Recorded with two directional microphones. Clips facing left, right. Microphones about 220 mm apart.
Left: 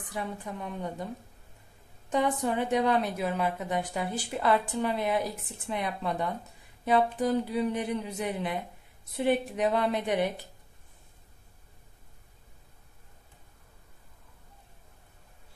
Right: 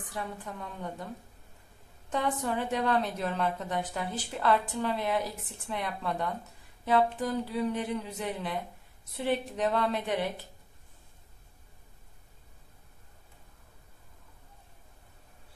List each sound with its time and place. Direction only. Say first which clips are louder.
0.1 s a woman's voice: left 3 dB; 15° left (ahead or behind)
2.0 s a woman's voice: left 3 dB; 15° left (ahead or behind)